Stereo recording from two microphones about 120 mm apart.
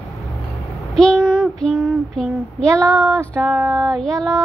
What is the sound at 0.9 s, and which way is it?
Child singing, centre (ahead or behind).